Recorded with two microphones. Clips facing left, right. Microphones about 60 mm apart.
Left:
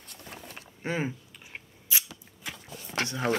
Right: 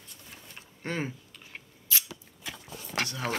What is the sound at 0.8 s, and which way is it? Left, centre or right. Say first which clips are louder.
Scissors: left 2 dB; centre.